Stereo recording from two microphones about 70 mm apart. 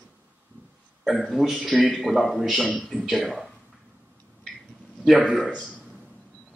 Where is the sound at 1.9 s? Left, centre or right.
Centre.